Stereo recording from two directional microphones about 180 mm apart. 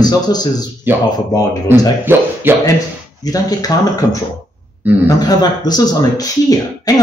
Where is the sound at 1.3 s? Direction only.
20° left (ahead or behind).